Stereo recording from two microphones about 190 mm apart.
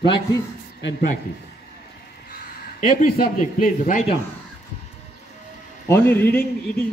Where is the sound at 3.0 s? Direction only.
45° left (ahead or behind).